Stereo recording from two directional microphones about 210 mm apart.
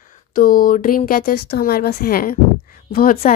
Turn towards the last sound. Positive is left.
turn(degrees=40)  # may be behind; listen again after turning